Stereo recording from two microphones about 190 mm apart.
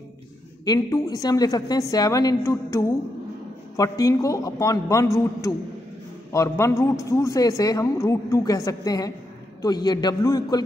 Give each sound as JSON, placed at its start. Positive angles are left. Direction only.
{"t": 0.7, "sound": "a man's voice", "side_deg": 15}